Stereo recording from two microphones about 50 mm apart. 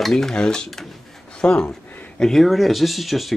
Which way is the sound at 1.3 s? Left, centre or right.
Centre.